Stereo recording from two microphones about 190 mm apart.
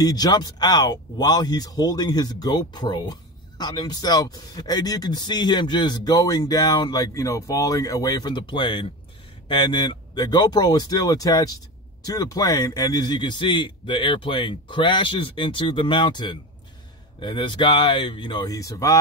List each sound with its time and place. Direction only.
0.0 s speech: 20° left (ahead or behind)